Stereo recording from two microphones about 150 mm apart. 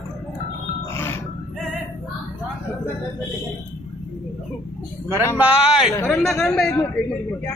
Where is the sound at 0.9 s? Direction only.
15° left (ahead or behind).